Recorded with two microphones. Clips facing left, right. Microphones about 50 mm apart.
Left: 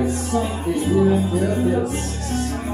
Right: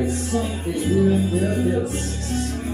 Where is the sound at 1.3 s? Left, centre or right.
Left.